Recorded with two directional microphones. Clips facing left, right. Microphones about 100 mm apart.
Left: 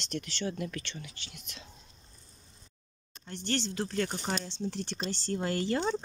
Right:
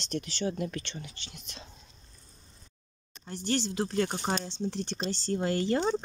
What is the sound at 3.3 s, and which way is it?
Speech, 10° right (ahead or behind).